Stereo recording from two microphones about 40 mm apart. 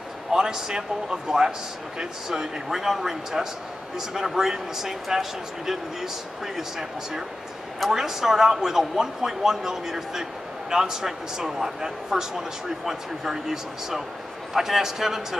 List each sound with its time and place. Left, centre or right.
0.3 s a man's voice: centre